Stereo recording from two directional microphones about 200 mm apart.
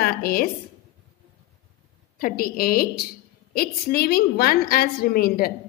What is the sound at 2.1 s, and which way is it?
A woman's voice, 45° left (ahead or behind).